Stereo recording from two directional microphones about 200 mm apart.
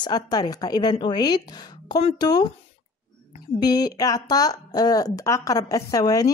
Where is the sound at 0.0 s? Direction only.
20° left (ahead or behind).